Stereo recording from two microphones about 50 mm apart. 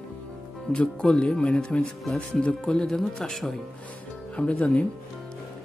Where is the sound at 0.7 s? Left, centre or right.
Centre.